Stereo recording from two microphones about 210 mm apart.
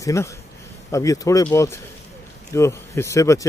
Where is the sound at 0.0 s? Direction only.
15° left (ahead or behind).